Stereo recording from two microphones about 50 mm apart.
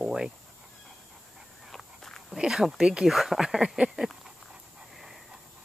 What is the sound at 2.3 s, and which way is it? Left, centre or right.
Speech, centre.